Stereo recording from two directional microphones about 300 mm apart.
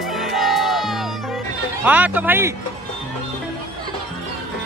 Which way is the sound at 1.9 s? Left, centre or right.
Centre.